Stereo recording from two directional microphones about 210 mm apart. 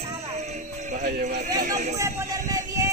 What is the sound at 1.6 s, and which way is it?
Speech, 35° right (ahead or behind).